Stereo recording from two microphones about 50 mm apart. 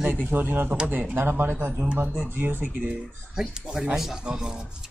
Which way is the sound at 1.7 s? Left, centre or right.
Right.